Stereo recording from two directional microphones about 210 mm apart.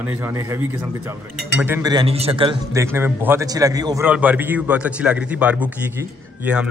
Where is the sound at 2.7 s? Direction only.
10° right (ahead or behind).